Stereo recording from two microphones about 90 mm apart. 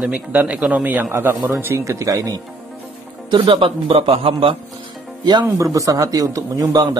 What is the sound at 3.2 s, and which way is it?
A man's voice, 65° right (ahead or behind).